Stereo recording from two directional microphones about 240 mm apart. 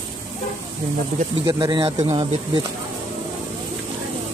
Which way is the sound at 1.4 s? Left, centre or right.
Centre.